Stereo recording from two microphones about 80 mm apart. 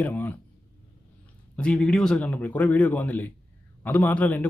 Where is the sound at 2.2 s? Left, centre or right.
Left.